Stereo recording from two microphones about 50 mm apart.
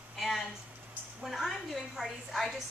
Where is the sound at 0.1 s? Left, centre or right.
Centre.